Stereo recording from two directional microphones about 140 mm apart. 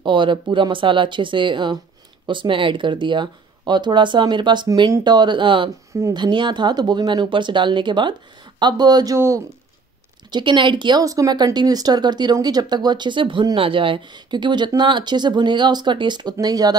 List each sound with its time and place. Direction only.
0.0 s speech: 35° right (ahead or behind)
10.3 s speech: 35° right (ahead or behind)